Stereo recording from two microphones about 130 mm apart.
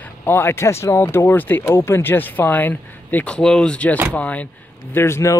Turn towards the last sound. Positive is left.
turn(degrees=20)  # may be behind; listen again after turning